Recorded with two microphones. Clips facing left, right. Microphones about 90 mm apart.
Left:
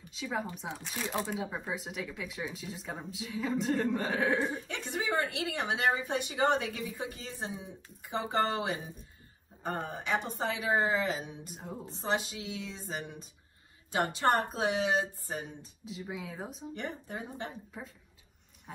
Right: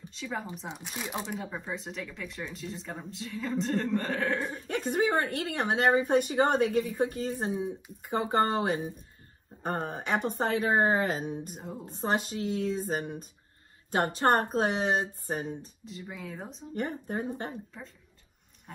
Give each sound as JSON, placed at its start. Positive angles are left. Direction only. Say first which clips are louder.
{"t": 0.1, "sound": "speech", "louder": "left 1 dB", "side_deg": 0}
{"t": 0.9, "sound": "speech", "louder": "left 2 dB", "side_deg": -15}
{"t": 1.4, "sound": "speech", "louder": "even", "side_deg": 5}
{"t": 4.6, "sound": "a woman's voice", "louder": "right 7 dB", "side_deg": -45}
{"t": 11.5, "sound": "speech", "louder": "right 2 dB", "side_deg": 0}
{"t": 11.9, "sound": "a woman's voice", "louder": "right 3 dB", "side_deg": -45}
{"t": 15.8, "sound": "speech", "louder": "left 1 dB", "side_deg": 0}
{"t": 16.7, "sound": "a woman's voice", "louder": "right 9 dB", "side_deg": -45}